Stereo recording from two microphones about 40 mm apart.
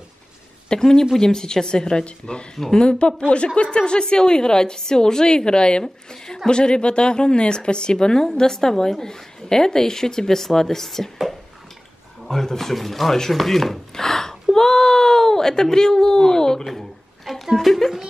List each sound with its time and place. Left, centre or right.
0.7 s a woman's voice: centre
2.5 s a woman's voice: centre
2.8 s a woman's voice: left
6.2 s a woman's voice: centre
6.5 s a woman's voice: left
12.3 s a woman's voice: centre
13.3 s chopping: centre
14.5 s a sound: centre
16.7 s a sound: centre
17.6 s speech: centre